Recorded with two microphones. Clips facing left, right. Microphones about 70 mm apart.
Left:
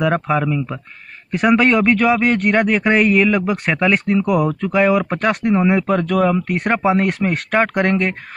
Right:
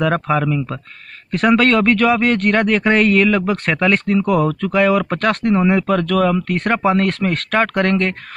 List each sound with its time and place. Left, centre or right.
0.0 s speech: centre